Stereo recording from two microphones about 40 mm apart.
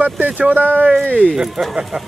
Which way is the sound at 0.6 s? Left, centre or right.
Right.